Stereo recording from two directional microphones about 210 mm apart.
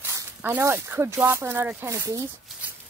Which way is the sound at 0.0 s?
10° right (ahead or behind).